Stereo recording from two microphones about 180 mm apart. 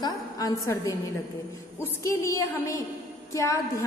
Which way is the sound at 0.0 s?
20° left (ahead or behind).